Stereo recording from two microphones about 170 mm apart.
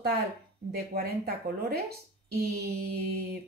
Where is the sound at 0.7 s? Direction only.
70° right (ahead or behind).